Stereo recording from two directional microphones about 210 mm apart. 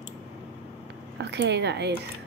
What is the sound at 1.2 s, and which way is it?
Speech, 55° right (ahead or behind).